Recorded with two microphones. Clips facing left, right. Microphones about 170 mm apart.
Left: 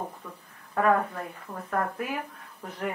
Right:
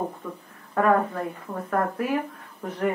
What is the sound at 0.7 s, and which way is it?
Speech, 40° right (ahead or behind).